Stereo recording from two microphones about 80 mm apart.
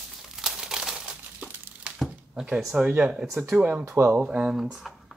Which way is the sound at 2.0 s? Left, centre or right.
Centre.